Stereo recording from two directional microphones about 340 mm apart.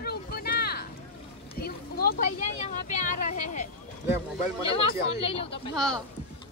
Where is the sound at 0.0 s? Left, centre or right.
Left.